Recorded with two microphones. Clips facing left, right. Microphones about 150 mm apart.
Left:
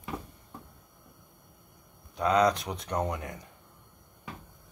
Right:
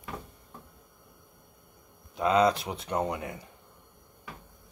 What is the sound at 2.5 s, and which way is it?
Speech, 5° right (ahead or behind).